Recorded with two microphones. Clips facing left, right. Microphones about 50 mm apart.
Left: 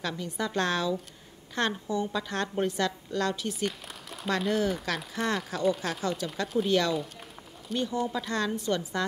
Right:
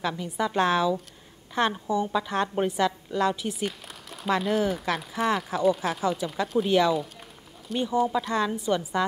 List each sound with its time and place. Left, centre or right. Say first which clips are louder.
0.2 s a woman's voice: right 5 dB; centre
7.8 s speech: right 6 dB; centre